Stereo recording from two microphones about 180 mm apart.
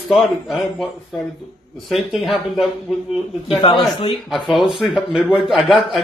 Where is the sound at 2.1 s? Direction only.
Centre (ahead or behind).